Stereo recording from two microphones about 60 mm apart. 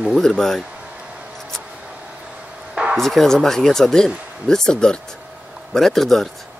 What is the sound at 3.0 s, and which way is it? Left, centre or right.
Speech, centre.